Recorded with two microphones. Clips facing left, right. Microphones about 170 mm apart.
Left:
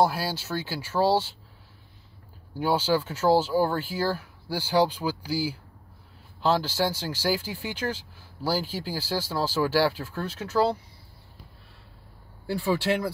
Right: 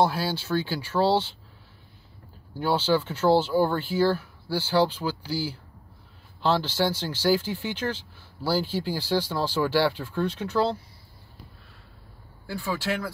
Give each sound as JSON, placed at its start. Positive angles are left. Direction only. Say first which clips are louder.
{"t": 0.0, "sound": "speech", "louder": "even", "side_deg": 10}
{"t": 2.5, "sound": "speech", "louder": "right 1 dB", "side_deg": 10}
{"t": 12.4, "sound": "speech", "louder": "left 4 dB", "side_deg": 35}